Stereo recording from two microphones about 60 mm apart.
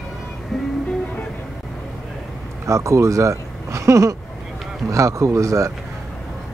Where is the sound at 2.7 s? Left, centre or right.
Right.